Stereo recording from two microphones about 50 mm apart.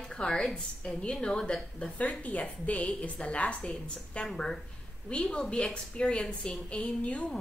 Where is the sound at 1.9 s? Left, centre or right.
Left; by 6.6 s centre.